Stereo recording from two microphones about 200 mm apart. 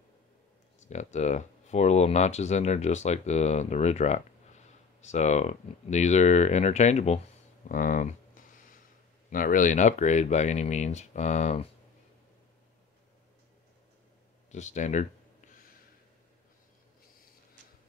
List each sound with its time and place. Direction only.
0.7 s speech: 35° left (ahead or behind)
7.6 s a sound: 40° left (ahead or behind)
9.3 s speech: 40° left (ahead or behind)
14.5 s speech: 35° left (ahead or behind)